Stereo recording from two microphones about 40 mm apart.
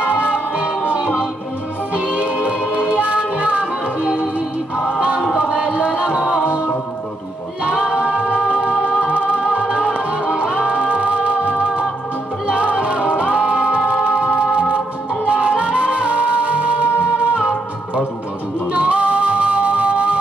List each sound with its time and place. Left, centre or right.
0.0 s music: right
4.0 s music: centre
5.3 s music: right
7.7 s a capella: right
9.0 s music: right
18.7 s music: right